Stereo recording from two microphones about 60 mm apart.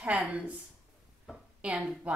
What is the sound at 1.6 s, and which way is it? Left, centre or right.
Speech, centre.